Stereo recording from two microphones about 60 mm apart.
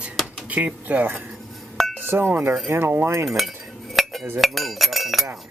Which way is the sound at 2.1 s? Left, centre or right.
Right.